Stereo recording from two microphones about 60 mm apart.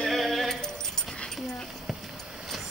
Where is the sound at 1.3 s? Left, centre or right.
Centre.